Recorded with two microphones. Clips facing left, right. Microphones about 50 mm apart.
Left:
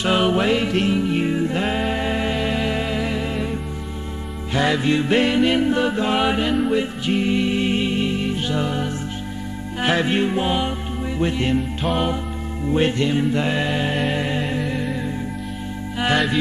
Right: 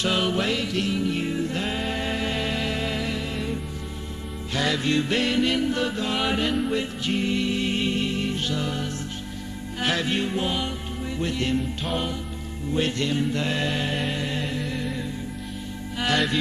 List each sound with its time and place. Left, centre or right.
0.0 s music: left
4.6 s music: centre
11.8 s music: centre
12.6 s music: left